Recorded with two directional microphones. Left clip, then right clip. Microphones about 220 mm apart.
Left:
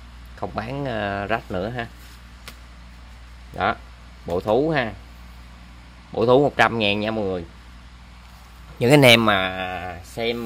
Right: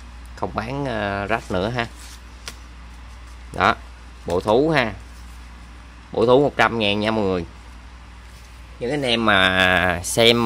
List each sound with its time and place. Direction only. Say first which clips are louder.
0.4 s speech: right 3 dB; centre (ahead or behind)
3.5 s speech: right 5 dB; 5° right (ahead or behind)
6.1 s speech: right 1 dB; 5° left (ahead or behind)
8.7 s a man's voice: left 9 dB; 40° left (ahead or behind)
9.4 s speech: right 10 dB; 20° right (ahead or behind)